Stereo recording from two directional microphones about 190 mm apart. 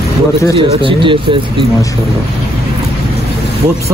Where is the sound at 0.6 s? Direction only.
25° right (ahead or behind).